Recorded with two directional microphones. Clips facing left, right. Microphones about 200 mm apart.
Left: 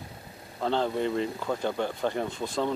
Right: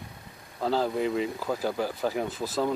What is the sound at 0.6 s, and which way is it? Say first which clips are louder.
Speech: right 1 dB; 5° right (ahead or behind).